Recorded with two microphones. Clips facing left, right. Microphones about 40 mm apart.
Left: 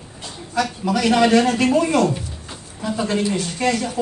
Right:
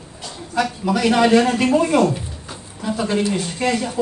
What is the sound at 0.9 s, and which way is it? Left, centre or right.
Speech, right.